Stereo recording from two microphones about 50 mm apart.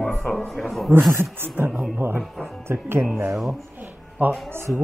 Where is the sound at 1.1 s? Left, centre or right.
Right.